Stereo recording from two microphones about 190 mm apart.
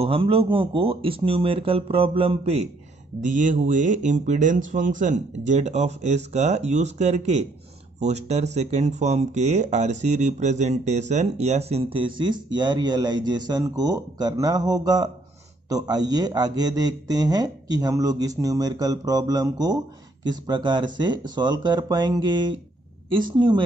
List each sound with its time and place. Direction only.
0.0 s speech: 30° right (ahead or behind)